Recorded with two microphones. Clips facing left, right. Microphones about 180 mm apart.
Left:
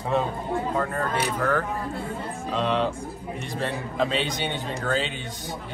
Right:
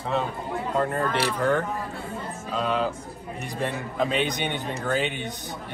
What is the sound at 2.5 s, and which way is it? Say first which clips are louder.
A man's voice: left 1 dB; 5° right (ahead or behind).